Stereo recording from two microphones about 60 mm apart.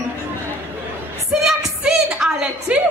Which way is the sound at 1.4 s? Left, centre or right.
Centre.